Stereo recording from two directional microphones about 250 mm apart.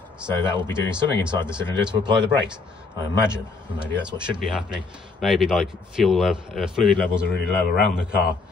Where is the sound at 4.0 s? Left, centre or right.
Centre.